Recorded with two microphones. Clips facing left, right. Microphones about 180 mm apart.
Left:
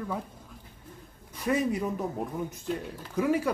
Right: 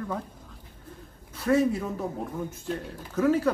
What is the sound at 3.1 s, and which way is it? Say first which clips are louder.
Speech: right 3 dB; 15° left (ahead or behind).